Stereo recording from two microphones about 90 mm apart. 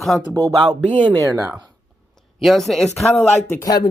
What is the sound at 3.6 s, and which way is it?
Speech, 45° left (ahead or behind).